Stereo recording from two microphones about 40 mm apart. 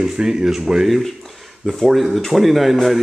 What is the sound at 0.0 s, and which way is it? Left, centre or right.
Speech, centre.